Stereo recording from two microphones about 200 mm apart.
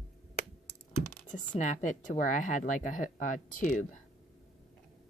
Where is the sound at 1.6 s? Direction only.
40° left (ahead or behind).